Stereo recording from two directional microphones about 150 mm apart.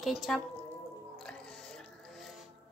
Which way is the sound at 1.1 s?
5° left (ahead or behind).